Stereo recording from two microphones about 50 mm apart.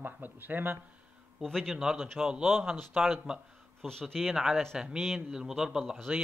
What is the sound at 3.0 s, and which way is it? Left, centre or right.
Speech, right.